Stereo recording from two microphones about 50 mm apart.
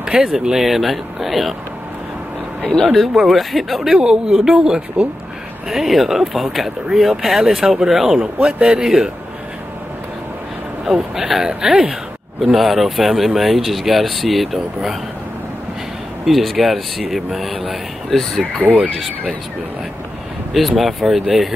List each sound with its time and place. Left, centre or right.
0.0 s speech: centre
2.7 s speech: centre
3.9 s speech: centre
8.4 s speech: right
10.9 s speech: centre
12.4 s speech: centre
16.3 s speech: centre
20.5 s speech: centre